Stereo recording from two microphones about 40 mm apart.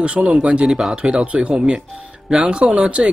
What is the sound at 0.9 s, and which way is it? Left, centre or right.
Speech, right.